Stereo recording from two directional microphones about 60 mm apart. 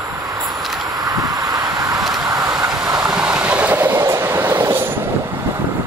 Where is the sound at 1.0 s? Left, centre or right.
Right.